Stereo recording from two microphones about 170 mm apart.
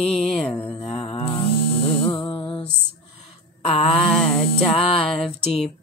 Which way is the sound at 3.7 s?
35° left (ahead or behind).